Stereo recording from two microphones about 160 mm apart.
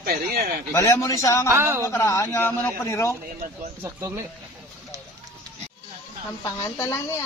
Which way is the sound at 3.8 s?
20° right (ahead or behind).